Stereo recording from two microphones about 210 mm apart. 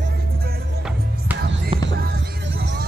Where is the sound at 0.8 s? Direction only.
5° right (ahead or behind).